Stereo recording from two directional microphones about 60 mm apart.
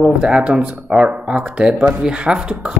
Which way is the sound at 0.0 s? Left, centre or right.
Centre.